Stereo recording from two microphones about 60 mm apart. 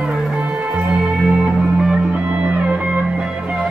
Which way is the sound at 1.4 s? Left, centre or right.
Centre.